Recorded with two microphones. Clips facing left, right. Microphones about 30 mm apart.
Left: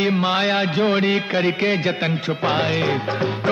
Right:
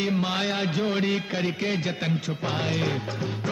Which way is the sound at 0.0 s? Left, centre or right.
Left.